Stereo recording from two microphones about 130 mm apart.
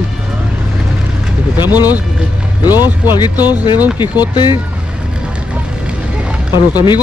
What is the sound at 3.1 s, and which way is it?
Speech, 35° left (ahead or behind).